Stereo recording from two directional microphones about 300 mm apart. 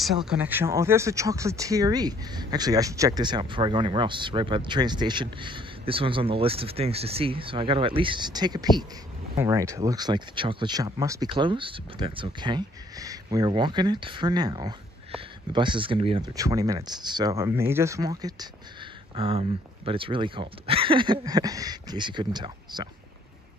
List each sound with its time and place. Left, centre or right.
0.0 s speech: centre